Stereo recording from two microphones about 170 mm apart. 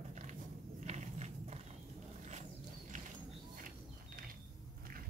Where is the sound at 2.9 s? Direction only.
50° right (ahead or behind).